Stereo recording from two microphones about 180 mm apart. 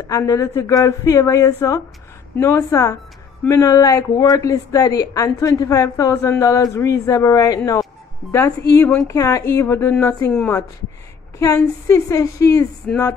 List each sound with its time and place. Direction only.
0.1 s a woman's voice: 20° left (ahead or behind)